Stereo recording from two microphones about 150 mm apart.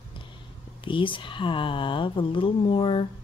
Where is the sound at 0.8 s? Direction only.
35° left (ahead or behind).